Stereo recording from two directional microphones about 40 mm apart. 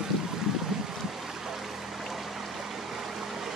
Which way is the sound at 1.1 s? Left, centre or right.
Centre.